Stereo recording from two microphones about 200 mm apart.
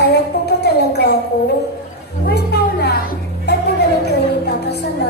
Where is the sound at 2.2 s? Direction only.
55° left (ahead or behind).